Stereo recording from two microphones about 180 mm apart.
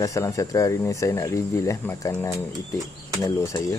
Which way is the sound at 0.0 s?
20° left (ahead or behind).